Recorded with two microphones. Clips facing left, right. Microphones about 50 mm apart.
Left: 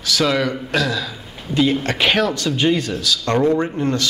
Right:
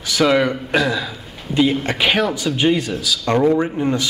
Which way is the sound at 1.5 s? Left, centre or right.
Centre.